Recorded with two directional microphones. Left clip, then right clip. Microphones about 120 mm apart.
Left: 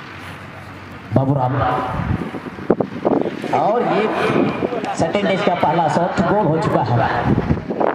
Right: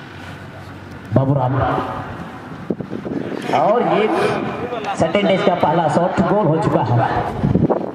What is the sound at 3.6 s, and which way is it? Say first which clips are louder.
Speech: right 2 dB; 25° left (ahead or behind).